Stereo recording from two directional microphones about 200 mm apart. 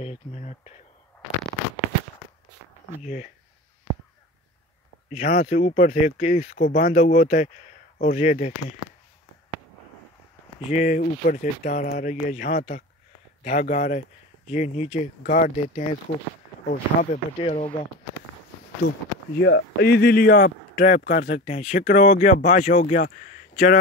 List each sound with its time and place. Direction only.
0.0 s speech: 35° left (ahead or behind)
5.1 s speech: 40° left (ahead or behind)
10.7 s speech: 40° left (ahead or behind)
19.4 s speech: 60° left (ahead or behind); by 23.8 s 40° left (ahead or behind)